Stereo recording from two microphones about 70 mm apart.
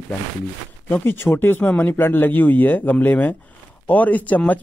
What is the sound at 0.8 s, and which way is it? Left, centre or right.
Speech, left.